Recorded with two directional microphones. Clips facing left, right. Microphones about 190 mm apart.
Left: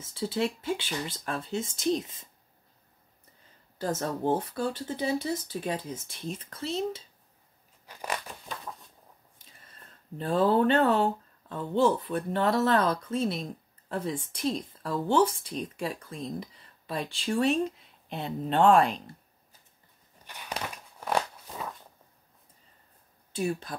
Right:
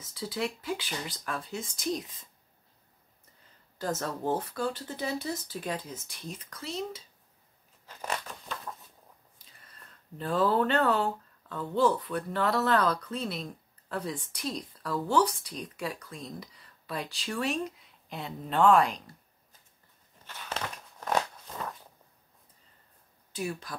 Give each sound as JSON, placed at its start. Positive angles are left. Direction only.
{"t": 0.0, "sound": "speech", "side_deg": 25}
{"t": 3.7, "sound": "speech", "side_deg": 25}
{"t": 7.8, "sound": "scissors", "side_deg": 15}
{"t": 9.7, "sound": "speech", "side_deg": 25}
{"t": 20.2, "sound": "a sound", "side_deg": 15}
{"t": 23.3, "sound": "speech", "side_deg": 30}